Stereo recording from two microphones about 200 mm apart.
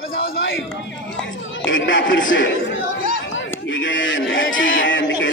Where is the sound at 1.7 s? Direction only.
70° left (ahead or behind).